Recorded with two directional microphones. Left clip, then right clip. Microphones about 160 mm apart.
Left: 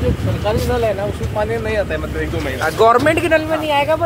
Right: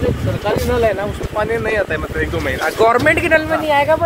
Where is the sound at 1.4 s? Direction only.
40° right (ahead or behind).